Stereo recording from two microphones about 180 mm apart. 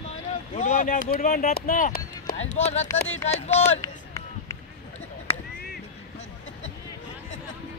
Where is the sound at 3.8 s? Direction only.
15° left (ahead or behind).